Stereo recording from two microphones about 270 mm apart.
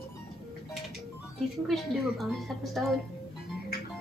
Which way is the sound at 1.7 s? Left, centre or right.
Centre.